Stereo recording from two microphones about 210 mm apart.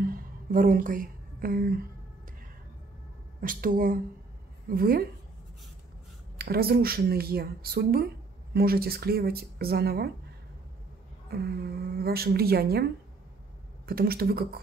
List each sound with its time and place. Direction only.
0.0 s a sound: 40° right (ahead or behind)
3.3 s speech: 40° right (ahead or behind)
6.3 s speech: 45° right (ahead or behind)
11.2 s speech: 50° right (ahead or behind)
13.8 s speech: 45° right (ahead or behind)